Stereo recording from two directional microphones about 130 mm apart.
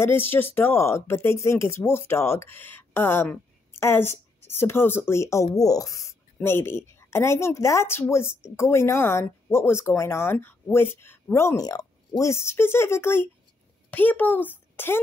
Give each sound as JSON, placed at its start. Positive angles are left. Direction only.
{"t": 0.2, "sound": "a woman's voice", "side_deg": 15}